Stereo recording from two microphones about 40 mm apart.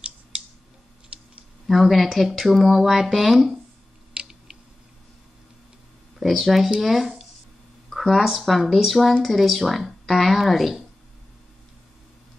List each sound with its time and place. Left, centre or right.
1.7 s speech: centre
4.1 s a sound: right
6.1 s speech: centre